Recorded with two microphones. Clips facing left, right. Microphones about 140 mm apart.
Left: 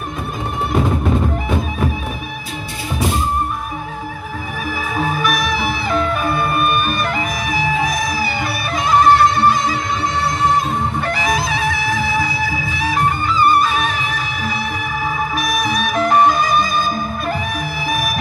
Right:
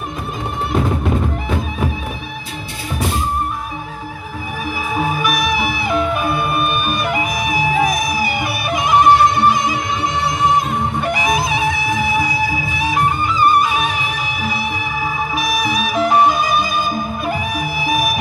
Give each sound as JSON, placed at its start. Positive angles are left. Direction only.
{"t": 5.1, "sound": "music", "side_deg": -10}